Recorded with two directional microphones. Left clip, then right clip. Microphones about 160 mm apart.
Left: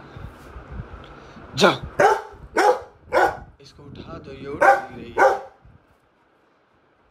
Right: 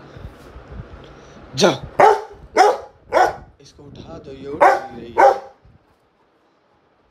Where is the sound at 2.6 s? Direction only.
5° right (ahead or behind).